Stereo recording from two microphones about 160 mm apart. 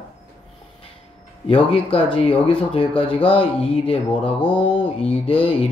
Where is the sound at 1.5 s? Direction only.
35° left (ahead or behind).